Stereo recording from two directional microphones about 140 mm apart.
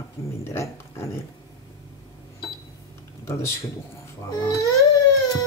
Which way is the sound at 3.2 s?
20° left (ahead or behind).